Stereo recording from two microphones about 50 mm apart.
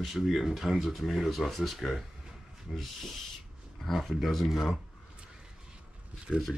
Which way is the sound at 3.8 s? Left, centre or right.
Centre.